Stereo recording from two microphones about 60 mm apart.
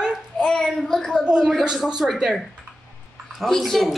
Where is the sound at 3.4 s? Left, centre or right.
Centre.